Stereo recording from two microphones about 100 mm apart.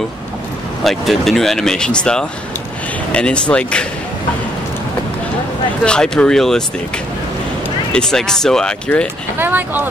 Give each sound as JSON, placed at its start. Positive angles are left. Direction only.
{"t": 0.8, "sound": "speech", "side_deg": 0}
{"t": 5.9, "sound": "speech", "side_deg": 10}
{"t": 7.9, "sound": "speech", "side_deg": 5}
{"t": 9.4, "sound": "speech", "side_deg": -20}